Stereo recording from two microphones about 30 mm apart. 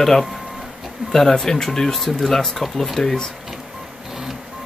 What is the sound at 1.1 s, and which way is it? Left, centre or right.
Speech, centre.